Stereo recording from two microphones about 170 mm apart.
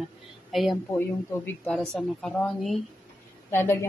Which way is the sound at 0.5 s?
Centre (ahead or behind).